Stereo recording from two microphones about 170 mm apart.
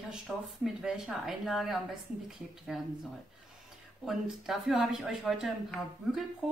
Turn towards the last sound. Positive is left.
turn(degrees=0)  # may be behind; listen again after turning